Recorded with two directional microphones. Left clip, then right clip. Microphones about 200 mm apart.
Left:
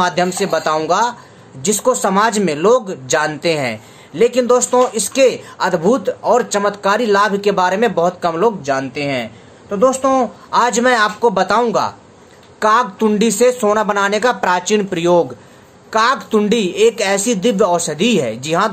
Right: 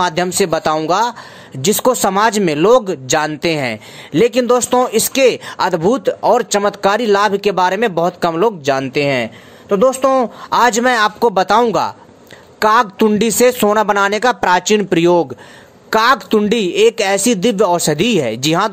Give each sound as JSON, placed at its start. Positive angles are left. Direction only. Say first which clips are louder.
{"t": 0.0, "sound": "a woman's voice", "louder": "right 1 dB", "side_deg": -40}